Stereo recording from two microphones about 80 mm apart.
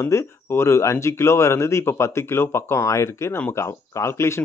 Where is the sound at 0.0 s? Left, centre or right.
Left.